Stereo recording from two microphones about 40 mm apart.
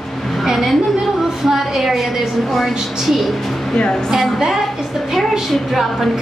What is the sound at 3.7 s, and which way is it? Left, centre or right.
Speech, left.